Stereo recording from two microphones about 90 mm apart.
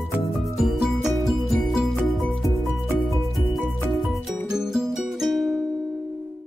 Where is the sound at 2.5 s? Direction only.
35° right (ahead or behind).